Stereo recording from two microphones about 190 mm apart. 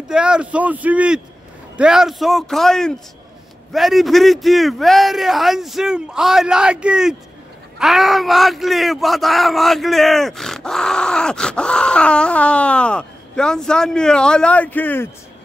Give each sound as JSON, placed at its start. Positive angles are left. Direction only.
{"t": 0.1, "sound": "a man's voice", "side_deg": -5}